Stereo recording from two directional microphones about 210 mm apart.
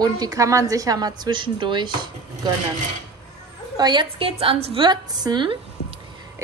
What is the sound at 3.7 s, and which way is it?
A woman's voice, 20° right (ahead or behind).